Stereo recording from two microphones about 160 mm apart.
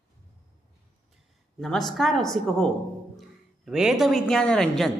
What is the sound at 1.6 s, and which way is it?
A woman's voice, centre (ahead or behind).